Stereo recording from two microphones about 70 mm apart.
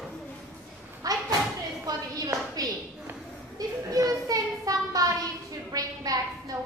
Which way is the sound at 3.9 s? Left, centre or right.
Right.